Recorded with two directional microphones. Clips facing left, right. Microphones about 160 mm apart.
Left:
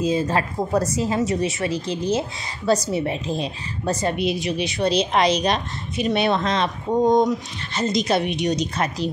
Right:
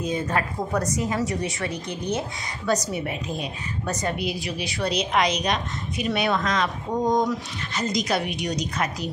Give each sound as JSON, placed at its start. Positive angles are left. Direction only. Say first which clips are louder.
{"t": 0.0, "sound": "speech", "louder": "left 4 dB", "side_deg": 25}